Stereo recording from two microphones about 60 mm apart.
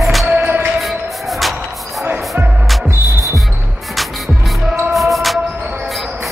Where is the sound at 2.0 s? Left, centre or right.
Right.